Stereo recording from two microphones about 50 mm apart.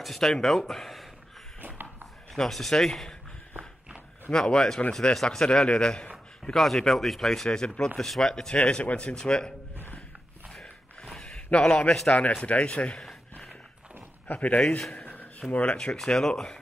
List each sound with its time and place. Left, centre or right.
0.0 s speech: centre
1.6 s a sound: right
2.3 s speech: centre
4.3 s speech: centre
6.5 s speech: centre
8.0 s speech: centre
8.5 s speech: left
10.5 s a sound: centre
12.1 s speech: left
13.0 s a sound: centre
14.2 s speech: left
15.0 s a sound: left
15.5 s speech: left
16.0 s speech: centre